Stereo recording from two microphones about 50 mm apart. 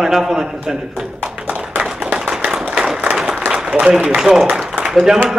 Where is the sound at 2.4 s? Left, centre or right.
Centre.